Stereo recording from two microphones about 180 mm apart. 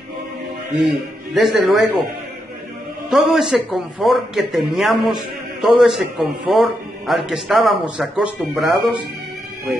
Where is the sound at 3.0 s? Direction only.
Centre (ahead or behind).